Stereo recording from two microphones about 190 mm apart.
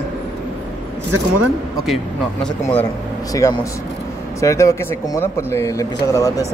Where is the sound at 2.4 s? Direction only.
10° left (ahead or behind).